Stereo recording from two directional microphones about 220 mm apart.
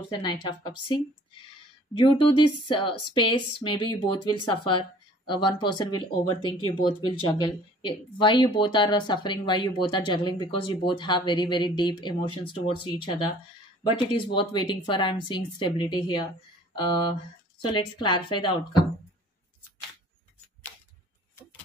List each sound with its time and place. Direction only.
0.1 s speech: 20° left (ahead or behind)